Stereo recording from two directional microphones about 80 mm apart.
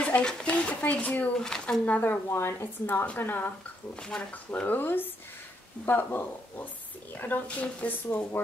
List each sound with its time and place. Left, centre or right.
0.0 s speech: centre
2.0 s speech: left